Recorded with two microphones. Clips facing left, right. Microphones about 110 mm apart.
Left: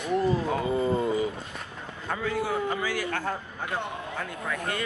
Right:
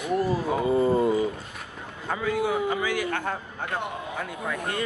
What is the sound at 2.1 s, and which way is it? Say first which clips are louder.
A man's voice: right 3 dB; 15° right (ahead or behind).